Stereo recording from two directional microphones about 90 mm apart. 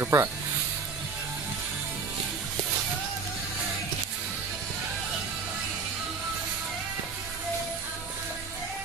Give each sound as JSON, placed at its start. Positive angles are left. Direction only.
{"t": 0.0, "sound": "speech", "side_deg": -30}